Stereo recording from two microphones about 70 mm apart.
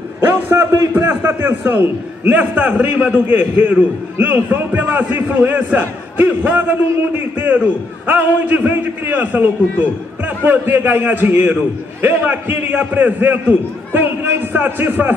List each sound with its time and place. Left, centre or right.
0.2 s a man's voice: right